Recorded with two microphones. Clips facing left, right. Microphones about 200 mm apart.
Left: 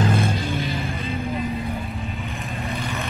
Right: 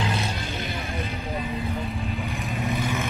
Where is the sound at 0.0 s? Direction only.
50° left (ahead or behind).